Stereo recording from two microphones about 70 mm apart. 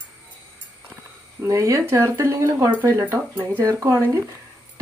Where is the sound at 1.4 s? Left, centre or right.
Right.